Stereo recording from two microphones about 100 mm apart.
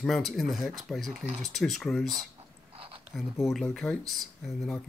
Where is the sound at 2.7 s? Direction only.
65° right (ahead or behind).